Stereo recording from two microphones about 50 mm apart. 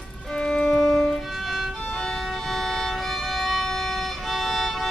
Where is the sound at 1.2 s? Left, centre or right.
Centre.